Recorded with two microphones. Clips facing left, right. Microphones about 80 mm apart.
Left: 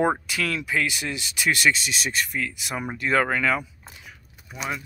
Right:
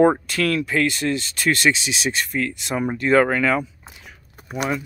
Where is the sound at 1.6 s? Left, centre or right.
Centre.